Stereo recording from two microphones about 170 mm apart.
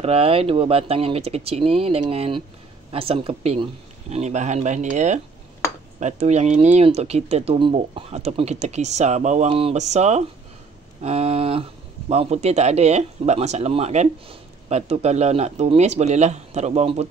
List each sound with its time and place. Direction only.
0.0 s speech: 35° right (ahead or behind)